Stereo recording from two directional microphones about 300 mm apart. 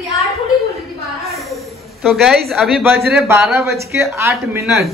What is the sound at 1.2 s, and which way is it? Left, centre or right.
A woman's voice, centre.